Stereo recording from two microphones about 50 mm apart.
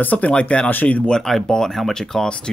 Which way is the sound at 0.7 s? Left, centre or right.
Left.